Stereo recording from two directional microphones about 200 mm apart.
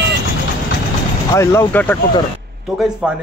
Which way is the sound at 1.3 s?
15° left (ahead or behind).